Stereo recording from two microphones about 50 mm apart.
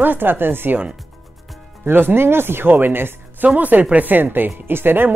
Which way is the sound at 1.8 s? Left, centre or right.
Right.